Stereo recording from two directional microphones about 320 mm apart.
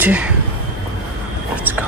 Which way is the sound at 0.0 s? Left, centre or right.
Centre.